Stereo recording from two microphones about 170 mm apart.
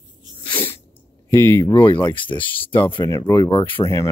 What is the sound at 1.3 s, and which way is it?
Speech, 15° left (ahead or behind).